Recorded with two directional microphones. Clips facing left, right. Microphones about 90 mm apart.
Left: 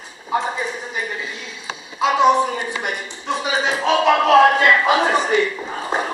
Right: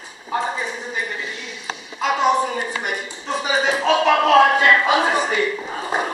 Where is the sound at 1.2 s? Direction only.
25° left (ahead or behind).